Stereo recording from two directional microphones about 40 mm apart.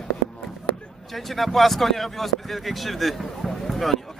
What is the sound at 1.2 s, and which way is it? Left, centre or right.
Speech, centre.